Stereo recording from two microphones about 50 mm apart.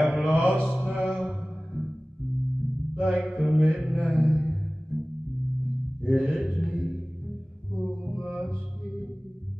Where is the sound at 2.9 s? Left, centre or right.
Centre.